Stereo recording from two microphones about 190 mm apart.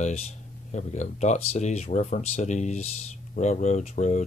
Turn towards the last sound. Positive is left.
turn(degrees=40)  # may be behind; listen again after turning